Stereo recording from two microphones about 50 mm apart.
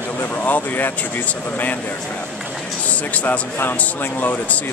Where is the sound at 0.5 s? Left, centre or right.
Left.